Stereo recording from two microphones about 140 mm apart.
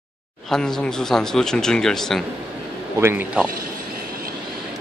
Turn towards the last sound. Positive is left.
turn(degrees=-15)  # may be behind; listen again after turning